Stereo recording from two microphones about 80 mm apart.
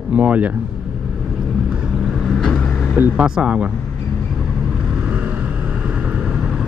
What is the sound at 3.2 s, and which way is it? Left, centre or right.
Speech, centre.